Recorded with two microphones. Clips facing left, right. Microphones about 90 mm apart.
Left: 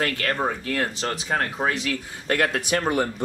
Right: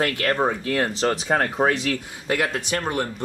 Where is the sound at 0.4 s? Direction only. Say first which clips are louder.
Right 3 dB; 20° right (ahead or behind).